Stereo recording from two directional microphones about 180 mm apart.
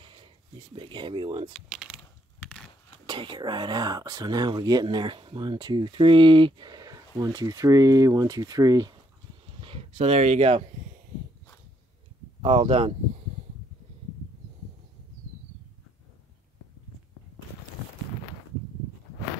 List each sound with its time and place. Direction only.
0.0 s a sound: 30° right (ahead or behind)
0.7 s speech: 25° right (ahead or behind)
1.5 s speech: centre (ahead or behind)
3.1 s speech: 25° right (ahead or behind)
9.6 s speech: 30° right (ahead or behind)
12.4 s speech: 30° right (ahead or behind)